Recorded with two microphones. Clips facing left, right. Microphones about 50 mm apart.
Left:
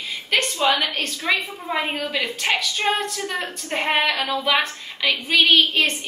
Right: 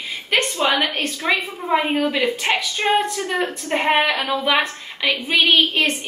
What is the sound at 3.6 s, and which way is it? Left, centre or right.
Speech, centre.